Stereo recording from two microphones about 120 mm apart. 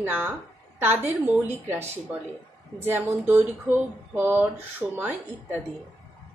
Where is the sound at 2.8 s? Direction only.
15° right (ahead or behind).